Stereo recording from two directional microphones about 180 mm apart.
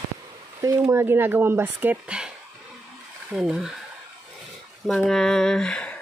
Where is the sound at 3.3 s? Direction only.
5° right (ahead or behind).